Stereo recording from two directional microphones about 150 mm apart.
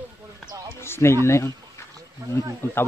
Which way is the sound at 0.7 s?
15° left (ahead or behind).